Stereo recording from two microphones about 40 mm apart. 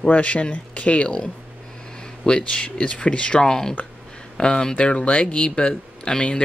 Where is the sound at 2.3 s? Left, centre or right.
Left.